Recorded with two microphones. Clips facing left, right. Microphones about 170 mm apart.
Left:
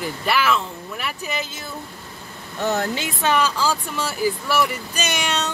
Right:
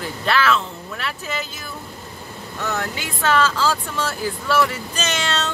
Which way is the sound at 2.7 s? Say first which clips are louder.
Left 4 dB; 30° left (ahead or behind).